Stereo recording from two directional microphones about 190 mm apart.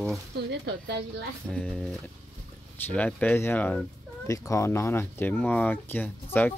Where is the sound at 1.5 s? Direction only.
5° left (ahead or behind).